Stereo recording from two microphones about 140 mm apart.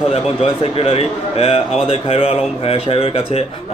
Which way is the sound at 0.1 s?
45° left (ahead or behind).